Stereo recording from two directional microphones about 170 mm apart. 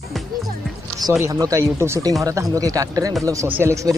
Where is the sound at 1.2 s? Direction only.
20° right (ahead or behind).